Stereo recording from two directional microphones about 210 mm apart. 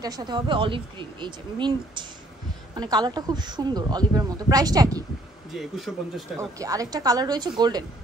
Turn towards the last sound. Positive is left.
turn(degrees=-20)  # may be behind; listen again after turning